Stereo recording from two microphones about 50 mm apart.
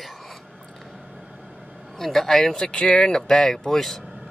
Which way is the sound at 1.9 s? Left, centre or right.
Centre.